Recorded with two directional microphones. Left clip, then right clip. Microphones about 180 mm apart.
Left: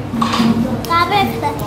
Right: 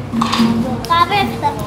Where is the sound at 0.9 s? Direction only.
10° left (ahead or behind).